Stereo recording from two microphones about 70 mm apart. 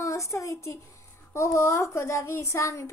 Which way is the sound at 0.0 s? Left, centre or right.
Left.